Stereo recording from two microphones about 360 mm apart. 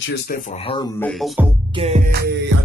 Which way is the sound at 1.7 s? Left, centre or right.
Centre.